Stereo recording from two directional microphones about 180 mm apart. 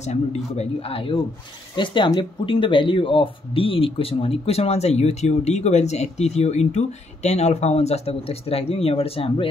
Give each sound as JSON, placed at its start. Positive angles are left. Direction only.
{"t": 0.0, "sound": "speech", "side_deg": 35}